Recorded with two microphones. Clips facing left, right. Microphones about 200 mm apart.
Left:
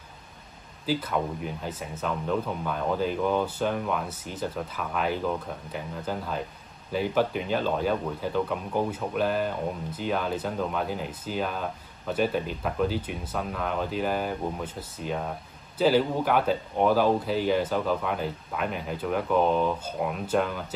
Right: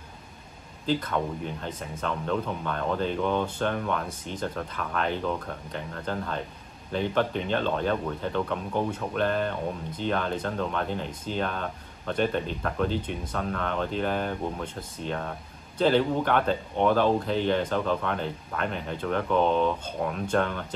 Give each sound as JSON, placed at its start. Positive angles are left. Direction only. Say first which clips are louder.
{"t": 0.8, "sound": "speech", "louder": "even", "side_deg": 5}